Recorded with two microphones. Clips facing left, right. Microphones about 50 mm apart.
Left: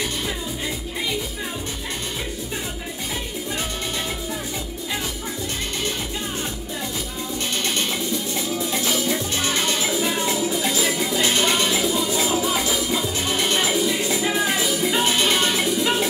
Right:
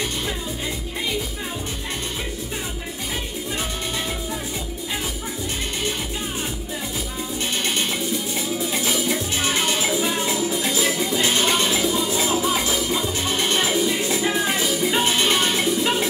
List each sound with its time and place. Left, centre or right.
8.4 s music: centre